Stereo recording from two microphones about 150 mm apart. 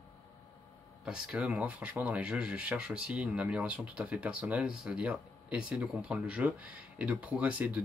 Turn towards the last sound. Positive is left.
turn(degrees=-10)  # may be behind; listen again after turning